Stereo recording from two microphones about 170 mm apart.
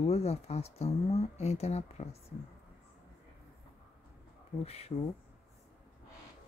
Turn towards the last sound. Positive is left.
turn(degrees=35)  # may be behind; listen again after turning